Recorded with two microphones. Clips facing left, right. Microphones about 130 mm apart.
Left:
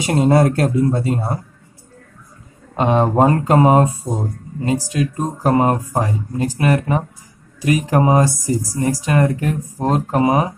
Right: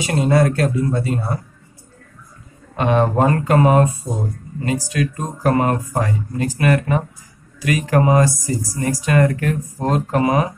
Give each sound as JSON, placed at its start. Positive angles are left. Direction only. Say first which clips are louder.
{"t": 0.0, "sound": "speech", "louder": "left 2 dB", "side_deg": 40}
{"t": 2.7, "sound": "speech", "louder": "left 1 dB", "side_deg": 30}